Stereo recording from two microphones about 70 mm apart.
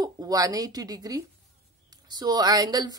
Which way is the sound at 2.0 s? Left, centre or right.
Right.